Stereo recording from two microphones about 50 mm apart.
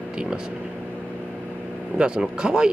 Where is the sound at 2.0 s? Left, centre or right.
Centre.